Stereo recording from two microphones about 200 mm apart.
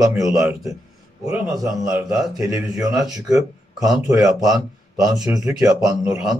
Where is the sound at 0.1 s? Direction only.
15° right (ahead or behind).